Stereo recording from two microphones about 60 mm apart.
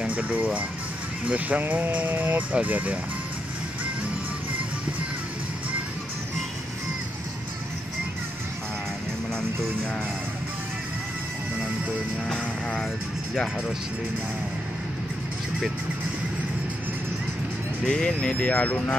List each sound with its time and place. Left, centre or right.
0.0 s speech: right
17.8 s speech: centre
18.3 s speech: left